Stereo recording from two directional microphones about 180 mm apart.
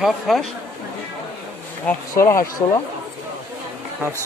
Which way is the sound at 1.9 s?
15° left (ahead or behind).